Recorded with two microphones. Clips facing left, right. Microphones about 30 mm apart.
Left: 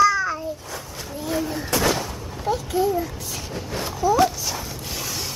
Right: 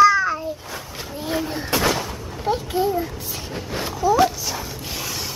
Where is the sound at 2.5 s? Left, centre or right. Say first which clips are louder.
Even; right.